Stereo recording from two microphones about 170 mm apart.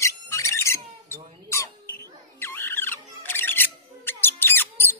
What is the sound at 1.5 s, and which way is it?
Rodents, 15° left (ahead or behind).